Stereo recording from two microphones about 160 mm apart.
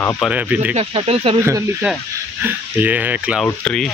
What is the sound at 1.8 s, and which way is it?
Speech, 10° right (ahead or behind).